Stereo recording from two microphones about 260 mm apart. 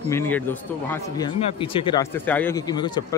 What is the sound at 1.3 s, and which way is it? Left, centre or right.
Speech, centre.